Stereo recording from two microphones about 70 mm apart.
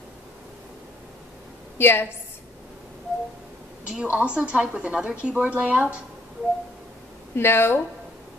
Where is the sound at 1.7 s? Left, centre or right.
Left.